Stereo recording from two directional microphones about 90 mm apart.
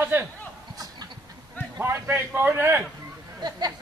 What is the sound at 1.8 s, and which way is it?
A man's voice, 30° right (ahead or behind).